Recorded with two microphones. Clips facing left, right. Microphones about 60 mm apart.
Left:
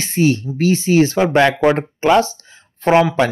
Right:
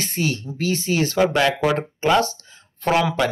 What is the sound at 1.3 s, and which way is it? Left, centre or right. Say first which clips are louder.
Speech: left 6 dB; left.